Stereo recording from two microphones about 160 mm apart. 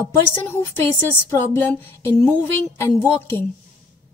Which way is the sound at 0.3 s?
15° left (ahead or behind).